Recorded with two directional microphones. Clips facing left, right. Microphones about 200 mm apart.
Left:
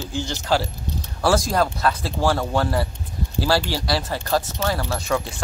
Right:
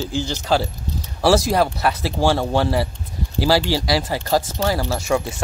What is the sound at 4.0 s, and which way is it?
Speech, 10° right (ahead or behind).